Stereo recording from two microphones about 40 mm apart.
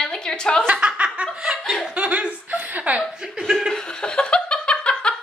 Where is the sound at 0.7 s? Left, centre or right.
Right.